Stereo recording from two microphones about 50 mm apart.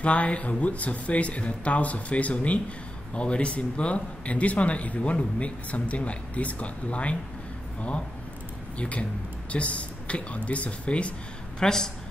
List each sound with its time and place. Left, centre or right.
0.0 s a man's voice: left
8.7 s a man's voice: left
11.6 s speech: centre